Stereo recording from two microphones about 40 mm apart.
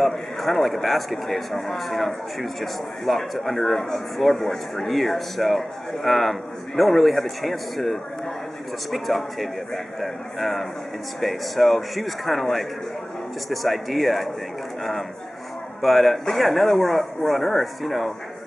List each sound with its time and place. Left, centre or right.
0.0 s a man's voice: centre